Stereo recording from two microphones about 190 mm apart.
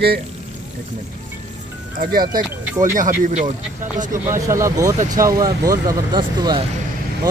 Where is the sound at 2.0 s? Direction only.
50° right (ahead or behind).